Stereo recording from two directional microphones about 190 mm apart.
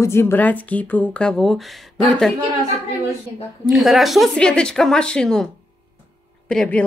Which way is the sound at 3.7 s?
Centre (ahead or behind).